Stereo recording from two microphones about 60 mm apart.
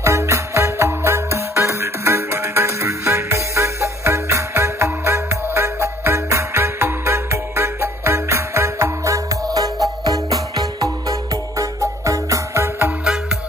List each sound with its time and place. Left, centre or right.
0.0 s music: right
9.1 s music: right
10.0 s music: right
13.0 s music: centre